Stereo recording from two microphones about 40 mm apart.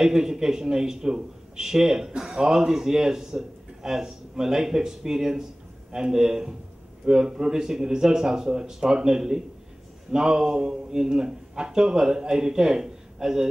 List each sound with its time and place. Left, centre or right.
0.0 s a man's voice: centre